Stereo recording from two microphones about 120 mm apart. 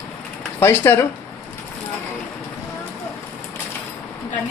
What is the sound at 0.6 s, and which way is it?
Speech, 20° left (ahead or behind).